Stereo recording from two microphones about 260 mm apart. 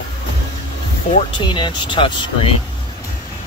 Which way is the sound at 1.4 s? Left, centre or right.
Centre.